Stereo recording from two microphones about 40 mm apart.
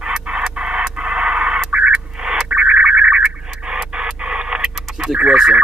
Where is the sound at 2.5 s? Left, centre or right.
Right.